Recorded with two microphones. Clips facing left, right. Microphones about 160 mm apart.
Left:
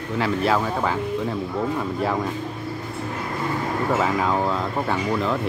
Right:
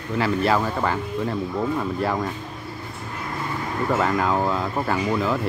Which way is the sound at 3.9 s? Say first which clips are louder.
Right 1 dB; centre (ahead or behind).